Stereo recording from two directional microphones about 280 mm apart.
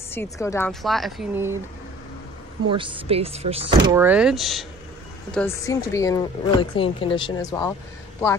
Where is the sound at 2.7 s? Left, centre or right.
Centre.